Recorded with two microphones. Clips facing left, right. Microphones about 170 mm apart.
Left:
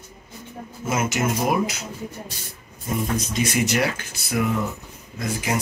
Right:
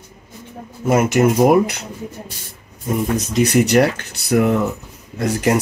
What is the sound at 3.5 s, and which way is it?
Speech, 65° right (ahead or behind).